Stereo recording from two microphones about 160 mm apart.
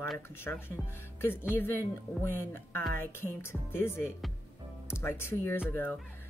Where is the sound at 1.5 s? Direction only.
15° left (ahead or behind).